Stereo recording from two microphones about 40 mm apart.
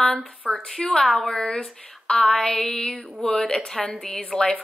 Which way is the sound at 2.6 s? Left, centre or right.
Left.